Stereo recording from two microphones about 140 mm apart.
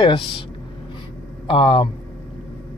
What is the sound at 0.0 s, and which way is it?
Speech, 35° left (ahead or behind).